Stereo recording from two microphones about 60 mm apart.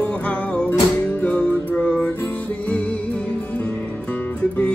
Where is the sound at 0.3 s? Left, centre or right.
Centre.